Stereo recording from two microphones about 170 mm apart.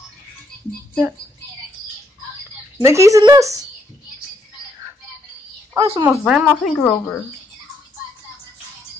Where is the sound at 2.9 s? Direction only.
20° right (ahead or behind).